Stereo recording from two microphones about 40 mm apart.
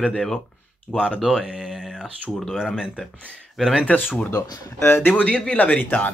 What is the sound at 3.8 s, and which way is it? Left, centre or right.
Speech, left.